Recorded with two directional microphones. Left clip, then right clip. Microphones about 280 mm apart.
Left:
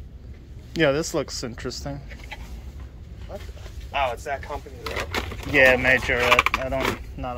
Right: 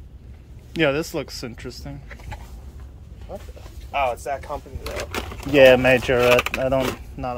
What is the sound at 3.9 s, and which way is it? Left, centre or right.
Speech, right.